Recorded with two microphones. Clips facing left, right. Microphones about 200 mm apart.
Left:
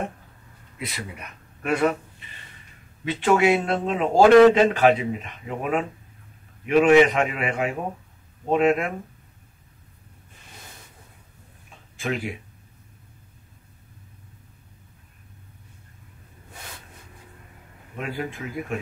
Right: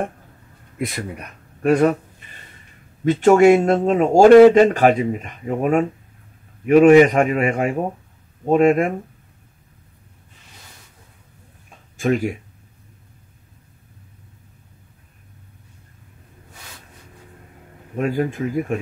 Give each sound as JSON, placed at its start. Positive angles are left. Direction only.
{"t": 0.7, "sound": "speech", "side_deg": -50}
{"t": 12.0, "sound": "speech", "side_deg": -45}
{"t": 17.9, "sound": "speech", "side_deg": -45}